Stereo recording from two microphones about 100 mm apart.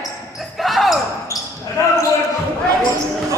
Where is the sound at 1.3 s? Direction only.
30° left (ahead or behind).